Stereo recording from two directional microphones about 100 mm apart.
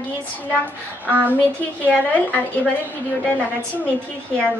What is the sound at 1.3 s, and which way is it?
A woman's voice, 15° left (ahead or behind).